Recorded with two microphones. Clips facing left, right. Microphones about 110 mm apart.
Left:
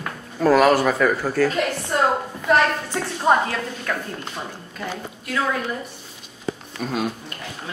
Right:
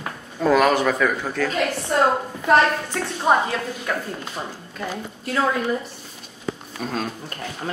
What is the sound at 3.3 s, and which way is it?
Speech, 5° right (ahead or behind).